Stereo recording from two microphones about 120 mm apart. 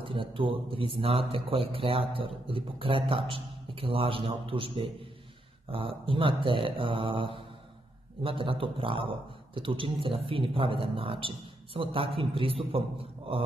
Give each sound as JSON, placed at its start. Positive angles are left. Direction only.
{"t": 0.0, "sound": "a man's voice", "side_deg": -45}